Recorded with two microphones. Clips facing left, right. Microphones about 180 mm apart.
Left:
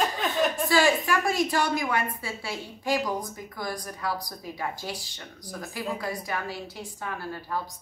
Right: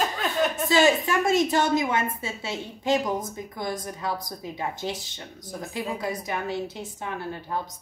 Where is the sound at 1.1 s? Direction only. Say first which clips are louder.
Right 3 dB; 20° right (ahead or behind).